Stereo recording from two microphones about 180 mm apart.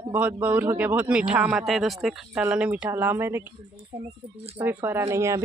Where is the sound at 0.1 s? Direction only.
10° right (ahead or behind).